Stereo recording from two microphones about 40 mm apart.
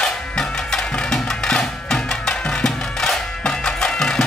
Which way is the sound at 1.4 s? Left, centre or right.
Centre.